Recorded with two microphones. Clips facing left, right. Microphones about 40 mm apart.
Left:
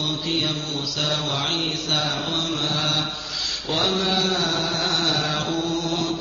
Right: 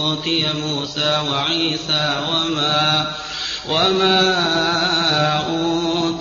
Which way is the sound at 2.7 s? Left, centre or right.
Right.